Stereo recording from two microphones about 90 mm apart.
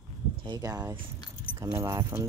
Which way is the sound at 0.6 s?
45° right (ahead or behind).